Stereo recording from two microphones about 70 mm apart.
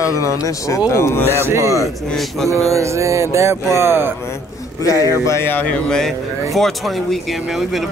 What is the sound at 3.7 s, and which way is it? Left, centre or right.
Speech, right.